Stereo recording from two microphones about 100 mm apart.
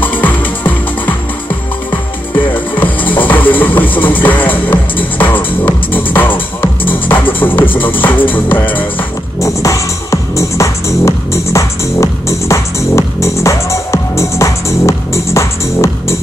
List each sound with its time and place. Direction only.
0.0 s music: 15° left (ahead or behind)
1.9 s music: 55° left (ahead or behind)
3.3 s music: 20° left (ahead or behind)
9.4 s music: 30° left (ahead or behind)